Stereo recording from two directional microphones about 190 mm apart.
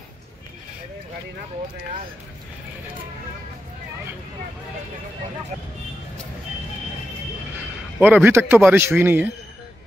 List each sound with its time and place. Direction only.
8.0 s a man's voice: 10° right (ahead or behind)